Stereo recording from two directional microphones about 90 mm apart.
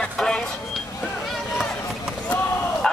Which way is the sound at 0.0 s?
10° left (ahead or behind).